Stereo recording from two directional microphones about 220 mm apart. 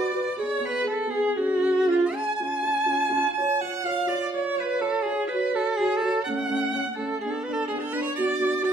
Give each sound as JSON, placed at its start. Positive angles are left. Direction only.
{"t": 1.2, "sound": "music", "side_deg": -5}
{"t": 5.5, "sound": "violin", "side_deg": -5}